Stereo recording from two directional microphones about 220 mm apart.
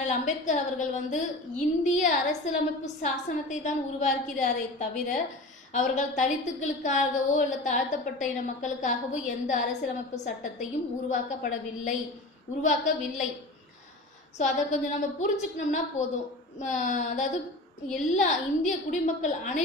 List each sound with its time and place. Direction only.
0.0 s a woman's voice: 35° left (ahead or behind)
14.4 s a woman's voice: 35° left (ahead or behind)